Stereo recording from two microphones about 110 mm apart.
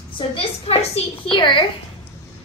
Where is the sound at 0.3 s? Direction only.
65° left (ahead or behind).